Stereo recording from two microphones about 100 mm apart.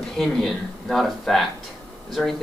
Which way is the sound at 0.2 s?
Centre (ahead or behind).